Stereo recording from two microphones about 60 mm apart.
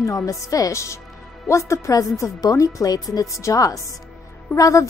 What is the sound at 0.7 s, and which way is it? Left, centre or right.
Speech, left.